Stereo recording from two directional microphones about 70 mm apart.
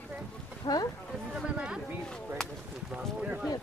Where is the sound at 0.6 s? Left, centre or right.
Left.